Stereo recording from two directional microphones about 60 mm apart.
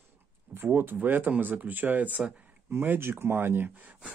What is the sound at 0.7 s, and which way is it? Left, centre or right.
Speech, right.